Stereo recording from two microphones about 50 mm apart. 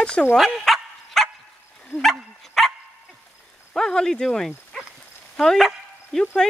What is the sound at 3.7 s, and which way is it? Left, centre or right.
Speech, centre.